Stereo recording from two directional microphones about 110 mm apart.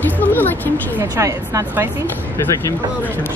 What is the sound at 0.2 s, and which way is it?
Speech, 15° left (ahead or behind).